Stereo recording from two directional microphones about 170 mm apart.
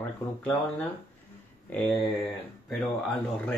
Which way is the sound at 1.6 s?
5° left (ahead or behind).